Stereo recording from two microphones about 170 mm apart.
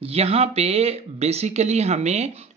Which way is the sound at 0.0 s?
35° right (ahead or behind).